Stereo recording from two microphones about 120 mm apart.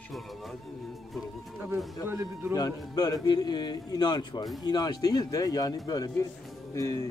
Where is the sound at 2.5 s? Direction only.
35° left (ahead or behind).